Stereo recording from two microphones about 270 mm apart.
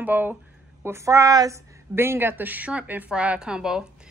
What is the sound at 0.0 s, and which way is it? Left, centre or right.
A woman's voice, centre.